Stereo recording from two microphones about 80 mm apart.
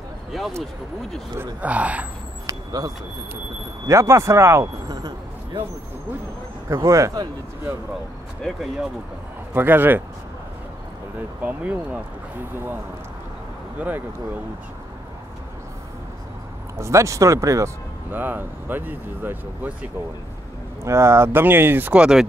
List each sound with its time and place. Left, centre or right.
0.3 s speech: centre
1.6 s speech: centre
2.4 s vehicle: right
3.8 s speech: right
4.8 s vehicle: right
6.7 s speech: right
9.5 s speech: right
11.1 s speech: centre
16.7 s speech: right
18.1 s speech: right
20.8 s speech: right